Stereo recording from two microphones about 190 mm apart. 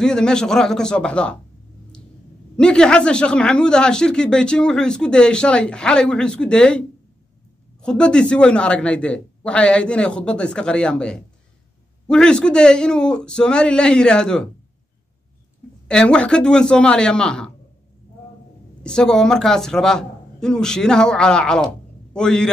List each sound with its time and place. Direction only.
0.0 s speech: 5° left (ahead or behind)
2.5 s speech: 5° left (ahead or behind)
7.8 s speech: 5° left (ahead or behind)
15.9 s speech: 5° left (ahead or behind)
18.8 s a man's voice: 5° left (ahead or behind)